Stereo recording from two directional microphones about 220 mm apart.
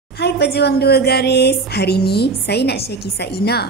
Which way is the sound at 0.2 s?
50° left (ahead or behind).